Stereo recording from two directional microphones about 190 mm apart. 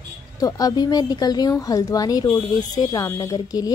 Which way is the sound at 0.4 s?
20° left (ahead or behind).